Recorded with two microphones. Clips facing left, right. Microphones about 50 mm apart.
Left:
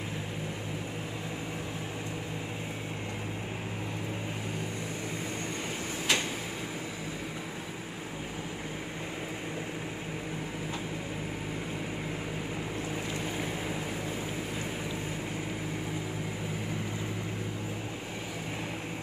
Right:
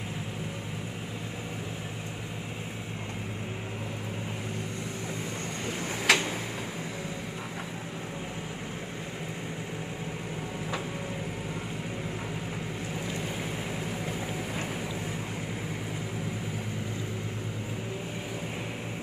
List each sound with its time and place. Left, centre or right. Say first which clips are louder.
6.1 s tick-tock: right 5 dB; right